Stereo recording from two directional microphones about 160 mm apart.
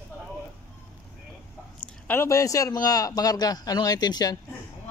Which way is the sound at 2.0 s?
15° left (ahead or behind).